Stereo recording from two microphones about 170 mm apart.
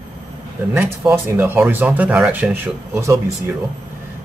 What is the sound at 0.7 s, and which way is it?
Speech, 10° right (ahead or behind).